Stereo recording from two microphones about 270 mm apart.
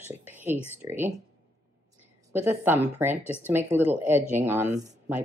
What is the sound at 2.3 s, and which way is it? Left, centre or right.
Speech, centre.